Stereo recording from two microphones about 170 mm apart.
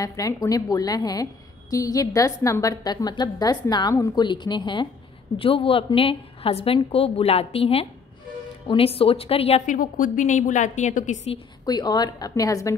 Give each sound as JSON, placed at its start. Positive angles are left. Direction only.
{"t": 0.0, "sound": "a woman's voice", "side_deg": 20}
{"t": 9.7, "sound": "a woman's voice", "side_deg": 50}
{"t": 11.6, "sound": "a woman's voice", "side_deg": 25}